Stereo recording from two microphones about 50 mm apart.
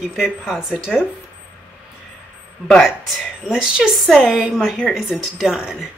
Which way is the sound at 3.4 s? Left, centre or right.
Centre.